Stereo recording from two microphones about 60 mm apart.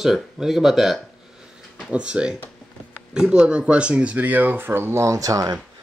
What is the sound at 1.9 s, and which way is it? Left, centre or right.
Speech, centre.